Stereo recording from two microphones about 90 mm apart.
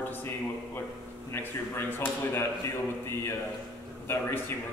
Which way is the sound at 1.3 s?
25° left (ahead or behind).